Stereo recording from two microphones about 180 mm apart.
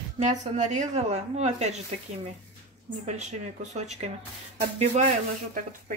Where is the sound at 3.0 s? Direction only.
40° right (ahead or behind).